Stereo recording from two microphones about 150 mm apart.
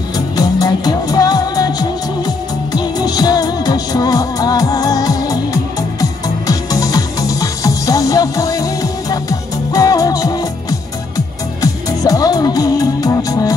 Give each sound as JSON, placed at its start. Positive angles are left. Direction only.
{"t": 0.4, "sound": "music", "side_deg": 25}